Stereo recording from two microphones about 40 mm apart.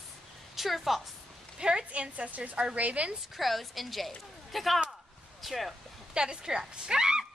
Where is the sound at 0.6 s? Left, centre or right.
Centre.